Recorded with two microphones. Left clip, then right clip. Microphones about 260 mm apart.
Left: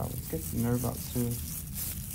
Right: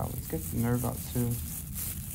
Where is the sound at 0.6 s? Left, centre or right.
Right.